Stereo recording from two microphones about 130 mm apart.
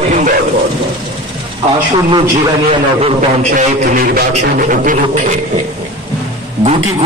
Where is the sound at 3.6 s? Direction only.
90° right.